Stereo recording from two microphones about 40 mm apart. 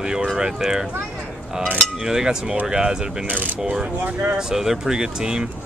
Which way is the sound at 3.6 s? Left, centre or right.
Centre.